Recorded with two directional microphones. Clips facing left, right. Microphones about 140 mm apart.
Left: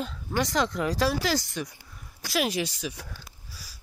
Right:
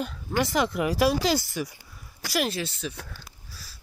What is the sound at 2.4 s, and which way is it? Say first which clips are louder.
Speech: left 1 dB; 15° left (ahead or behind).